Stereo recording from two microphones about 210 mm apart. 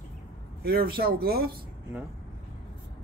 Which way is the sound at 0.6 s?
45° right (ahead or behind).